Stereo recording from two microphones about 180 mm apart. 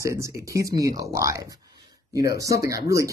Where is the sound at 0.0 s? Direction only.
15° right (ahead or behind).